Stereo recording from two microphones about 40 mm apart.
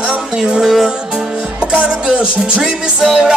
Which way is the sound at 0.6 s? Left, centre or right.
Centre.